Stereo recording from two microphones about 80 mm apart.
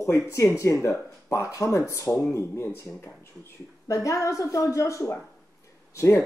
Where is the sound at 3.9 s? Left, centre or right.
Left.